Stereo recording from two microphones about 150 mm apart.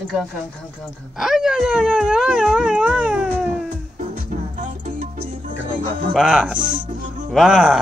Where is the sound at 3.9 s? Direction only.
55° right (ahead or behind).